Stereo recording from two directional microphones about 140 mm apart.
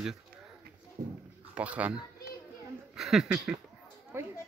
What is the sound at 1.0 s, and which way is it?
Speech, 65° right (ahead or behind).